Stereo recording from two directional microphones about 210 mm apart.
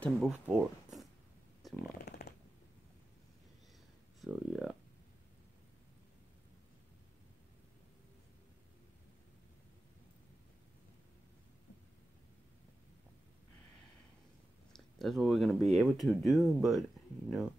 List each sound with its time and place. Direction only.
0.0 s speech: centre (ahead or behind)
1.6 s chainsaw: centre (ahead or behind)
2.0 s shuffling cards: 50° left (ahead or behind)
4.2 s speech: centre (ahead or behind)
14.7 s speech: centre (ahead or behind)